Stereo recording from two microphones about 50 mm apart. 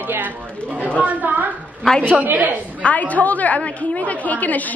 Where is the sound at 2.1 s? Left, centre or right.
Right.